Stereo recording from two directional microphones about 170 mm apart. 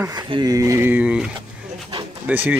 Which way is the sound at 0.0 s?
25° right (ahead or behind).